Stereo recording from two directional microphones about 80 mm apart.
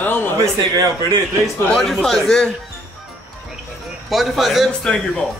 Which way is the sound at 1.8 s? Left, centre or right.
Centre.